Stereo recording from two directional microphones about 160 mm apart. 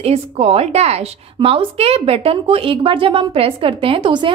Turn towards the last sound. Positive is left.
turn(degrees=-30)  # may be behind; listen again after turning